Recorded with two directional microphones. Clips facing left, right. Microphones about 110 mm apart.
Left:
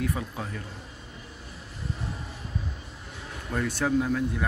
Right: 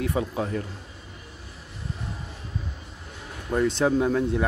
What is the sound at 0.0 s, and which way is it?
Speech, 25° right (ahead or behind).